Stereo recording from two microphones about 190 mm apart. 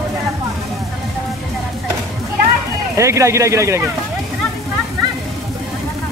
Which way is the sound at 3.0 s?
15° right (ahead or behind).